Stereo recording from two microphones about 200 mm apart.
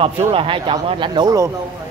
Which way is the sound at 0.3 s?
25° right (ahead or behind).